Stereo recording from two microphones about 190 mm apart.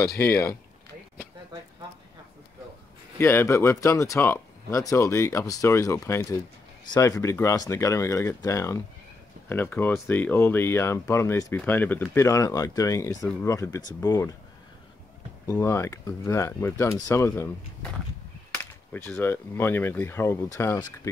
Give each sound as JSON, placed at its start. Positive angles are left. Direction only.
{"t": 0.2, "sound": "speech", "side_deg": 15}
{"t": 3.2, "sound": "speech", "side_deg": 10}
{"t": 15.5, "sound": "speech", "side_deg": 15}
{"t": 19.0, "sound": "speech", "side_deg": 10}